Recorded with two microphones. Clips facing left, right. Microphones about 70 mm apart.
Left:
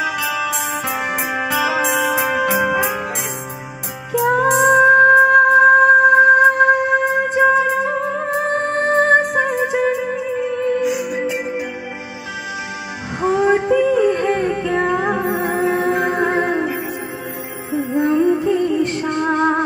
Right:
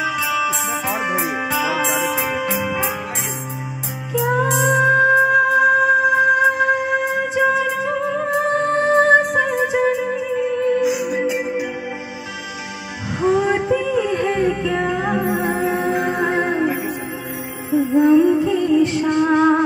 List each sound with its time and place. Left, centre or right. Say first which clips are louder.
0.4 s music: even; left
2.5 s music: left 5 dB; left
4.1 s music: left 3 dB; left
10.8 s music: right 1 dB; centre
13.2 s music: left 2 dB; left
17.8 s music: right 4 dB; centre
18.1 s music: right 1 dB; left